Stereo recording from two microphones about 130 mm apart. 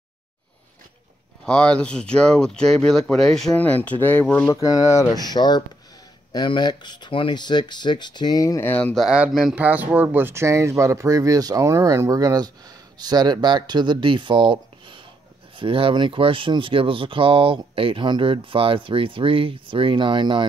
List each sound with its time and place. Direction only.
1.4 s speech: 5° left (ahead or behind)
4.5 s speech: 25° left (ahead or behind); by 9.0 s 10° left (ahead or behind)
9.0 s speech: 5° right (ahead or behind); by 20.4 s 40° right (ahead or behind)